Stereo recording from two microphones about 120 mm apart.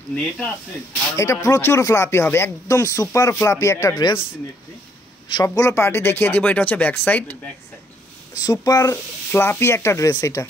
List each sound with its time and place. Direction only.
0.1 s speech: 10° left (ahead or behind)
1.1 s speech: 25° left (ahead or behind)
3.9 s speech: 40° left (ahead or behind)
5.6 s speech: 20° left (ahead or behind)
8.4 s speech: 30° left (ahead or behind)
9.3 s speech: 20° left (ahead or behind)